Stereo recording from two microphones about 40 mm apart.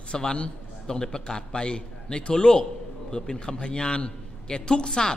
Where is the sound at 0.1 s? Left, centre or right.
Left.